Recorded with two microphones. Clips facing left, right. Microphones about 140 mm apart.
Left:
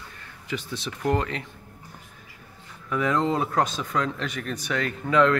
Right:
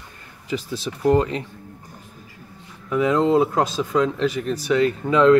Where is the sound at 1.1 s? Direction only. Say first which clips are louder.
Right 7 dB; 30° right (ahead or behind).